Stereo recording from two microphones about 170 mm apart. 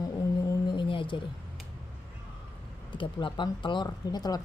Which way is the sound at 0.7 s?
30° left (ahead or behind).